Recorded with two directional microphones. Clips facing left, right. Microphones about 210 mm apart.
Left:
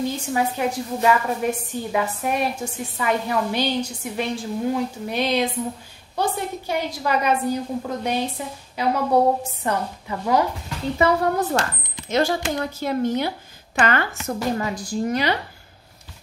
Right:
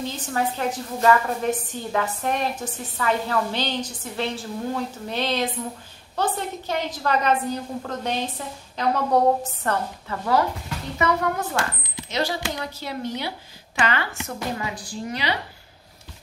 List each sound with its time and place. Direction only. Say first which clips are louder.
0.1 s a woman's voice: left 3 dB; 10° left (ahead or behind)
11.0 s speech: left 4 dB; 30° left (ahead or behind)
12.1 s speech: left 5 dB; 50° left (ahead or behind)